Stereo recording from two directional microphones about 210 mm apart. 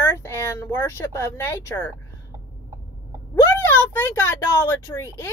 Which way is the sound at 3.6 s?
10° left (ahead or behind).